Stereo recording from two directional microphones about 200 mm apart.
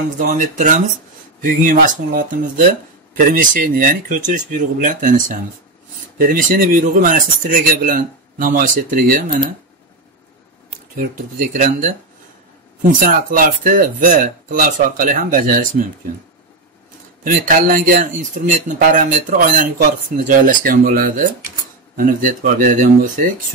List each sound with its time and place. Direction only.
0.3 s speech: 40° right (ahead or behind)
11.0 s speech: 45° right (ahead or behind)
13.0 s speech: 40° right (ahead or behind)
17.2 s speech: 40° right (ahead or behind)